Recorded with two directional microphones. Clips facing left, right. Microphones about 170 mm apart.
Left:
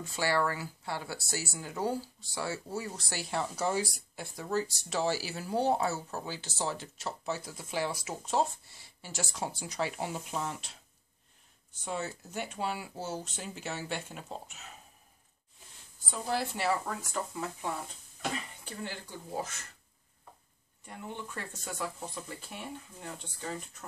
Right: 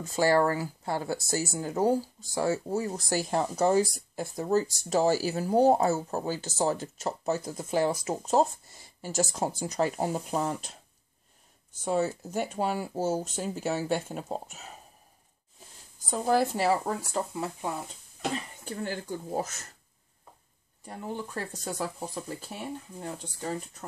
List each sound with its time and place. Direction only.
0.0 s speech: 45° right (ahead or behind)
11.8 s speech: 45° right (ahead or behind)
16.1 s speech: 45° right (ahead or behind); by 17.8 s 25° right (ahead or behind)
18.6 s speech: 45° right (ahead or behind)
20.8 s speech: 35° right (ahead or behind)